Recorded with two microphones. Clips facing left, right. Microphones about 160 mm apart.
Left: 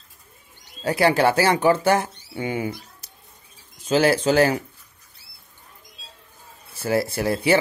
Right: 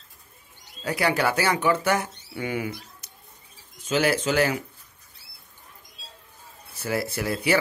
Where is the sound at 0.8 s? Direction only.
30° left (ahead or behind).